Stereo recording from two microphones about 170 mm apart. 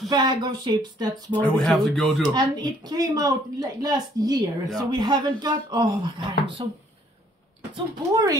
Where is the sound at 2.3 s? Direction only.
25° right (ahead or behind).